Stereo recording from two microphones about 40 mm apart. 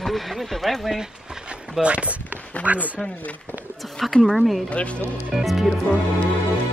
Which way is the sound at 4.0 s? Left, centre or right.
Centre.